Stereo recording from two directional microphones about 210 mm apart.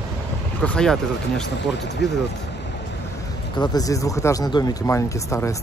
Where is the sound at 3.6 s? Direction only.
15° left (ahead or behind).